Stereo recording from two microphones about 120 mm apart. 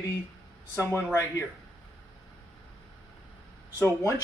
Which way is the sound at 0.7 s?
20° left (ahead or behind).